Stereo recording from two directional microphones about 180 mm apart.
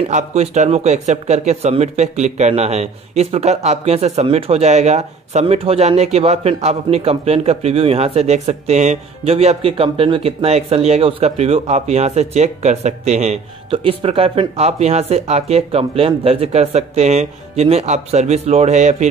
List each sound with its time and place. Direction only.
0.1 s speech: 40° right (ahead or behind)